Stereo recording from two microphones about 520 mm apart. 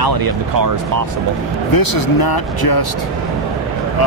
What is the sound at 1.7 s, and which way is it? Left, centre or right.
Speech, left.